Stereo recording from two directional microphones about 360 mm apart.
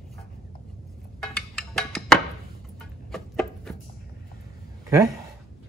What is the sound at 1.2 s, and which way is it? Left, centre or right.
Music, centre.